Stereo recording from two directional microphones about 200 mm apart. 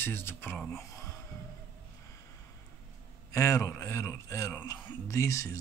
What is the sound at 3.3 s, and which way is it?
Speech, 15° left (ahead or behind).